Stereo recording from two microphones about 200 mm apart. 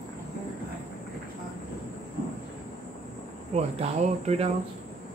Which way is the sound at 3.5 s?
30° right (ahead or behind).